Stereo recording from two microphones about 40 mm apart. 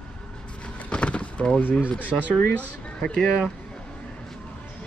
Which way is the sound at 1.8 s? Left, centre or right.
Left.